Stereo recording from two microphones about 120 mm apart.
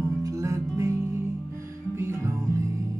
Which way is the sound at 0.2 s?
25° right (ahead or behind).